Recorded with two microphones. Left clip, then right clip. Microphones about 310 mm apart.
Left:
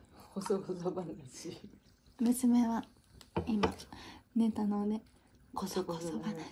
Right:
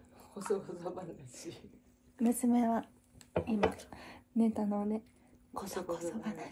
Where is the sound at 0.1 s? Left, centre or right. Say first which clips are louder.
Left 2 dB; left.